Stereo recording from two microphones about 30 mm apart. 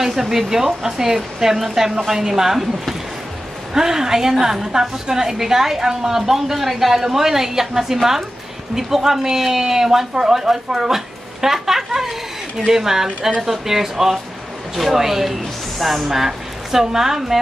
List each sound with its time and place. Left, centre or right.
0.0 s a woman's voice: centre
3.7 s a woman's voice: centre